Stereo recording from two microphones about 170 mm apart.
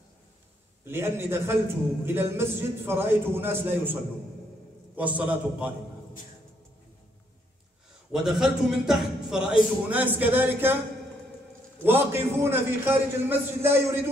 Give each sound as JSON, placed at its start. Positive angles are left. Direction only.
{"t": 0.8, "sound": "a man's voice", "side_deg": -15}
{"t": 8.1, "sound": "a man's voice", "side_deg": 0}
{"t": 11.8, "sound": "a man's voice", "side_deg": -15}